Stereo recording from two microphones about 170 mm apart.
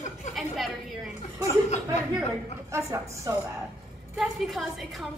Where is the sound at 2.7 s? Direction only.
15° right (ahead or behind).